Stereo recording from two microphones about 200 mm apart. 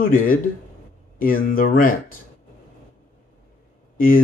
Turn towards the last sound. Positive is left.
turn(degrees=45)  # may be behind; listen again after turning